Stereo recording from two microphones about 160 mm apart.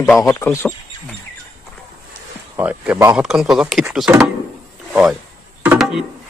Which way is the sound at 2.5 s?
10° right (ahead or behind).